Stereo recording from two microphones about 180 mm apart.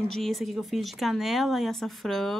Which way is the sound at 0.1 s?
Centre (ahead or behind).